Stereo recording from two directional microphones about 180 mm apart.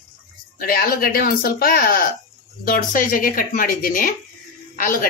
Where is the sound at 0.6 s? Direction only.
55° left (ahead or behind).